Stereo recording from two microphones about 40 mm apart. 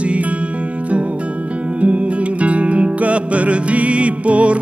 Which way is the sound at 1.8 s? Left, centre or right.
Right.